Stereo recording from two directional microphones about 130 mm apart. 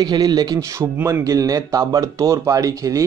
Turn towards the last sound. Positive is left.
turn(degrees=-25)  # may be behind; listen again after turning